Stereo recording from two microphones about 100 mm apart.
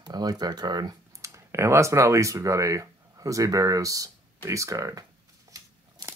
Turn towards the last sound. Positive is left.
turn(degrees=-35)  # may be behind; listen again after turning